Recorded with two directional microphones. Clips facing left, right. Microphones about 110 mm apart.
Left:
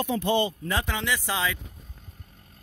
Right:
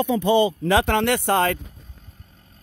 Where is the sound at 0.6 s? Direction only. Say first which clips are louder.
Right 10 dB; 75° right (ahead or behind); by 1.6 s 55° right (ahead or behind).